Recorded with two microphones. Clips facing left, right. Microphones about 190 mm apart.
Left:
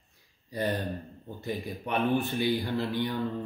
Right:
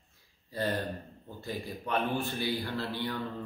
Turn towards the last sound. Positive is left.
turn(degrees=15)  # may be behind; listen again after turning